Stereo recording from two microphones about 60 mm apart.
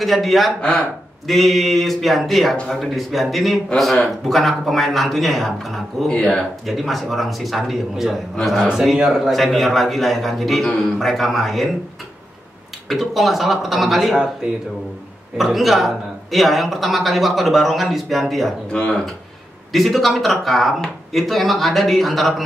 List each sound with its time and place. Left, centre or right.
0.0 s a man's voice: centre
0.6 s speech: centre
1.2 s a man's voice: centre
6.0 s speech: centre
6.6 s a man's voice: centre
12.8 s a man's voice: centre
15.3 s a man's voice: centre
18.7 s speech: centre
19.7 s a man's voice: centre